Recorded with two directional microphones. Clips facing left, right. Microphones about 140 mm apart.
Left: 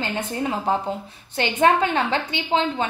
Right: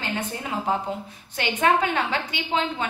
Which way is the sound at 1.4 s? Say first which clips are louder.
Left 3 dB; 30° left (ahead or behind).